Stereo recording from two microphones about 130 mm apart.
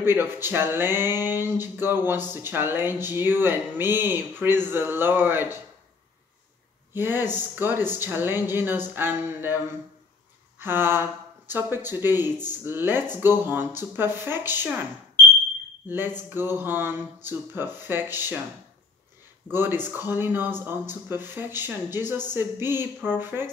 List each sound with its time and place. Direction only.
0.0 s speech: 15° right (ahead or behind)
6.9 s speech: 15° right (ahead or behind)
10.6 s speech: 15° right (ahead or behind)
15.9 s speech: 15° right (ahead or behind)
19.4 s speech: 15° right (ahead or behind)